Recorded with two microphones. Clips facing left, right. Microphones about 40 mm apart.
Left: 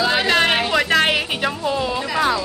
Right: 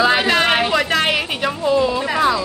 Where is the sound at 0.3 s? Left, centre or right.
Centre.